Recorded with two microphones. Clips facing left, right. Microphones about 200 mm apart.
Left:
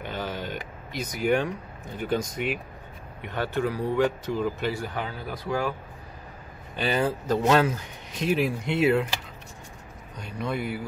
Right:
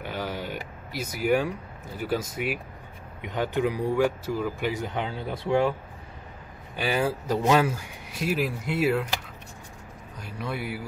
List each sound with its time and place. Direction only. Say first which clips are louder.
0.0 s a sound: even; 10° right (ahead or behind)
3.2 s speech: right 1 dB; 15° right (ahead or behind)
6.8 s speech: left 1 dB; 10° right (ahead or behind)
10.1 s speech: left 3 dB; 5° right (ahead or behind)